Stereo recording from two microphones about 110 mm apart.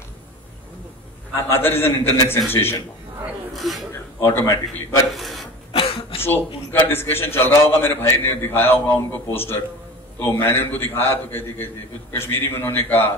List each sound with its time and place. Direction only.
1.3 s a man's voice: 20° left (ahead or behind)
3.5 s speech: centre (ahead or behind)
4.2 s a man's voice: 20° left (ahead or behind)
5.1 s a sound: centre (ahead or behind)
5.7 s a sound: 55° left (ahead or behind)
6.2 s a man's voice: 20° left (ahead or behind)